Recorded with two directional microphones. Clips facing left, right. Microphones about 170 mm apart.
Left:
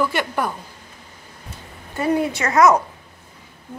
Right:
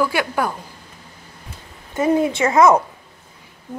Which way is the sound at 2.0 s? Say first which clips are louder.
Right 3 dB; 20° right (ahead or behind).